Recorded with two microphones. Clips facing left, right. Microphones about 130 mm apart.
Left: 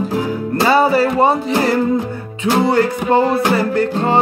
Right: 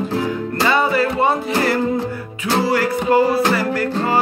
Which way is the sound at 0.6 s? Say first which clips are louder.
Left 4 dB; 35° left (ahead or behind).